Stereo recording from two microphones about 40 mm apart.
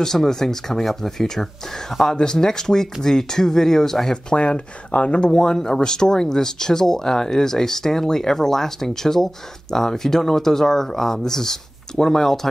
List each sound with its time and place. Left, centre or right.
0.0 s speech: centre
4.1 s speech: left